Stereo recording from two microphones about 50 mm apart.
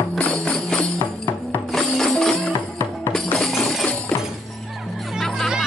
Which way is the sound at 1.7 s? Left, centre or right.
Centre.